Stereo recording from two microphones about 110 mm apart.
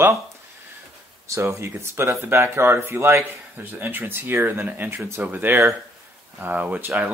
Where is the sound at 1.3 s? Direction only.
25° right (ahead or behind).